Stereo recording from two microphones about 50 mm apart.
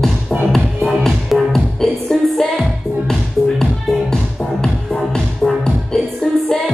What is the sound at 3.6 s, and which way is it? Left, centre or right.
Music, centre.